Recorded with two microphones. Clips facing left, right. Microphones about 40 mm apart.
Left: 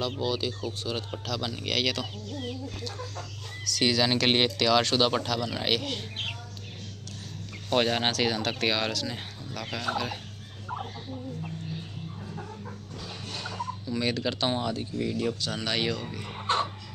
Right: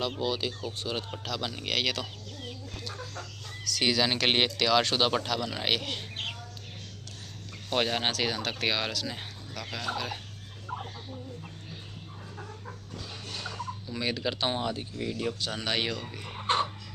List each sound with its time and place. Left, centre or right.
0.2 s a man's voice: centre
7.7 s speech: centre
8.1 s speech: centre
10.7 s a sound: centre
13.3 s a sound: centre
13.8 s a man's voice: centre
15.0 s speech: centre
15.4 s a man's voice: right